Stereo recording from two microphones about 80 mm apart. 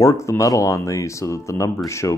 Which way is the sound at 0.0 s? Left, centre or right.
Left.